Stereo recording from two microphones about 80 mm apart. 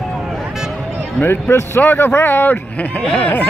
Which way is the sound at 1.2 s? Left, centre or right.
Left.